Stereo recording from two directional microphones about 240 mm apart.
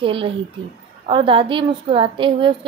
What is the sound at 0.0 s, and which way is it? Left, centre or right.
Speech, right.